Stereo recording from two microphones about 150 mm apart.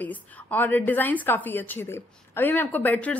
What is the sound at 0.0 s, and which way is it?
A woman's voice, 10° left (ahead or behind).